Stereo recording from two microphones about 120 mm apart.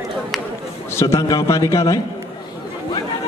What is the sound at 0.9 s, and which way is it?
A man's voice, 25° left (ahead or behind).